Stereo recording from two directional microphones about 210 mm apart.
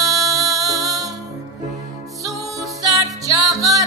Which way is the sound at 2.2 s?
15° right (ahead or behind).